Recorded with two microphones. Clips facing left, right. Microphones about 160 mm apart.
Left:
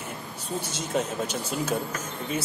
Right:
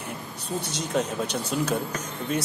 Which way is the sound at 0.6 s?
65° right (ahead or behind).